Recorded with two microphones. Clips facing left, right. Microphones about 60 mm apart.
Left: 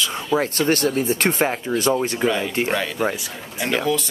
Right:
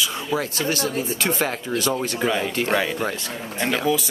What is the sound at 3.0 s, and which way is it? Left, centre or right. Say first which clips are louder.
Speech: left 3 dB; centre.